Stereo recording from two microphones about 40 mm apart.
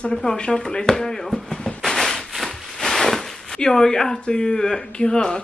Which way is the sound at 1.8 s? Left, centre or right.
Centre.